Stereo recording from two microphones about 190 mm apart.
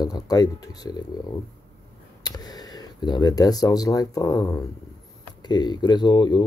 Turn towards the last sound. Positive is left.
turn(degrees=25)  # may be behind; listen again after turning